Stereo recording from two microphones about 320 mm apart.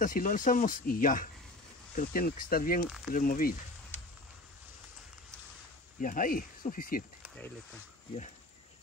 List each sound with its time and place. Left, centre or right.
0.0 s speech: left
5.9 s speech: left